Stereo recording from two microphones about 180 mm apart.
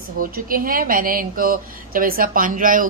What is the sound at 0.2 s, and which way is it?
A woman's voice, 50° right (ahead or behind).